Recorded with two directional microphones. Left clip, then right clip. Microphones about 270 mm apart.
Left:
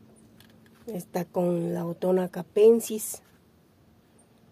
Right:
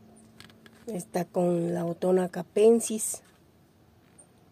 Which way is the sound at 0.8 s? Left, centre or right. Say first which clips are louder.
Right 1 dB; centre.